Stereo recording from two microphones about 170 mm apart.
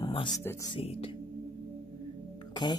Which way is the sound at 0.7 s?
35° left (ahead or behind).